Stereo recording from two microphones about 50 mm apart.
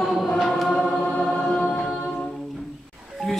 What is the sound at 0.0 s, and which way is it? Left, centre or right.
Choir, centre.